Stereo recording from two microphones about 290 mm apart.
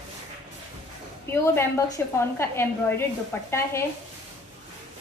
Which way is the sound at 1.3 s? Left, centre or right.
Centre.